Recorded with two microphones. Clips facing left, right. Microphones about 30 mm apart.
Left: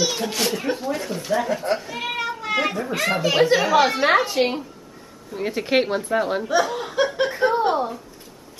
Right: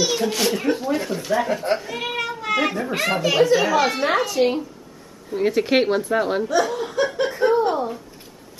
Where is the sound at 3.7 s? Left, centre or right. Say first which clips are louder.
Left 2 dB; centre.